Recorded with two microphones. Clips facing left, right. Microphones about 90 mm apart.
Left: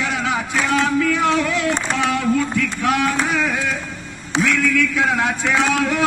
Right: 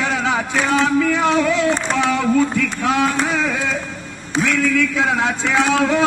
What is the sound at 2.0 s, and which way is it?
Speech, 25° right (ahead or behind).